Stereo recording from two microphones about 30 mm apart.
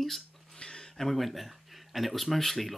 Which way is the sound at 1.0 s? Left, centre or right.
Centre.